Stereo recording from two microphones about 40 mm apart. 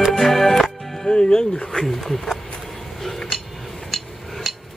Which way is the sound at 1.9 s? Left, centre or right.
Centre.